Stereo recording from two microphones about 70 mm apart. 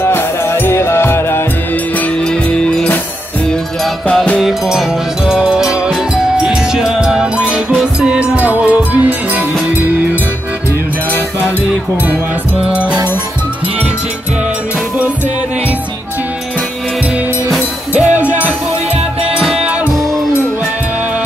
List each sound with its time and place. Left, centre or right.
0.0 s music: left
2.2 s music: centre
4.1 s music: centre
4.4 s music: centre
12.6 s music: centre
17.9 s music: right